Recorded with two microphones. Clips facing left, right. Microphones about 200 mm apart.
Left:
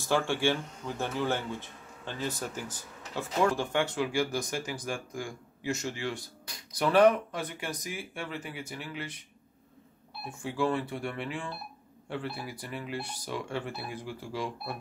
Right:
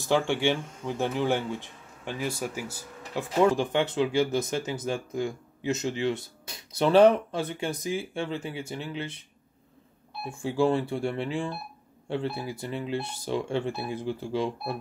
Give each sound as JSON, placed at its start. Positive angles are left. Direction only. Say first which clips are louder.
{"t": 0.0, "sound": "speech", "louder": "right 3 dB", "side_deg": -20}
{"t": 10.4, "sound": "speech", "louder": "right 5 dB", "side_deg": -30}